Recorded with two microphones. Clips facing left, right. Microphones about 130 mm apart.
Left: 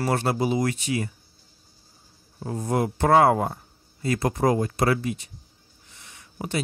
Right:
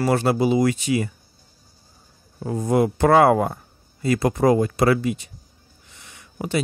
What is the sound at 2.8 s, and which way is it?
Speech, 90° right.